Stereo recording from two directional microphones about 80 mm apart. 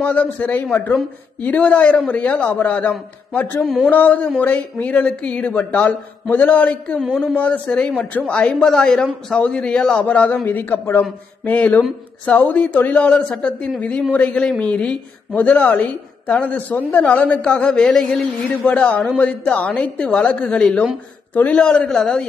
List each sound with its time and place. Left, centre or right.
0.0 s a woman's voice: centre
3.6 s speech: centre
3.9 s a woman's voice: centre